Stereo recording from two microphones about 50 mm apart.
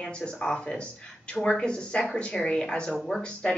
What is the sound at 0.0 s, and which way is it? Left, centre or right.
Speech, centre.